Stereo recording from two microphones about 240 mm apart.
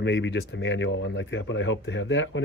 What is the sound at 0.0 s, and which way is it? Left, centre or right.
Speech, left.